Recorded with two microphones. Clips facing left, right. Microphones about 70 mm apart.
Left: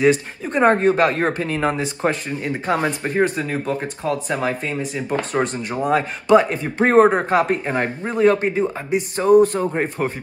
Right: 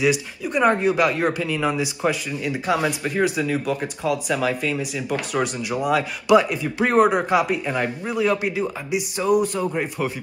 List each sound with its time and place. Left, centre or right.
0.0 s speech: left